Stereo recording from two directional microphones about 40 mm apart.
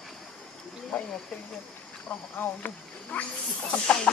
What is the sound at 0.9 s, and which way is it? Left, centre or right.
Speech, left.